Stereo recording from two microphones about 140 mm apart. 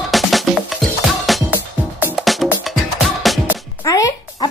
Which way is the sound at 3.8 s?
25° left (ahead or behind).